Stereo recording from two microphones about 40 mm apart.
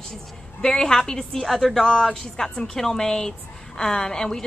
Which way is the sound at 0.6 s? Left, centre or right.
Centre.